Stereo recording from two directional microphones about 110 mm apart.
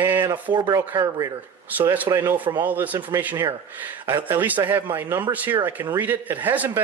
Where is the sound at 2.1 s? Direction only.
20° right (ahead or behind).